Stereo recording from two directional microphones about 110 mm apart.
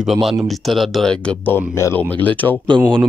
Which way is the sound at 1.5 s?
25° left (ahead or behind).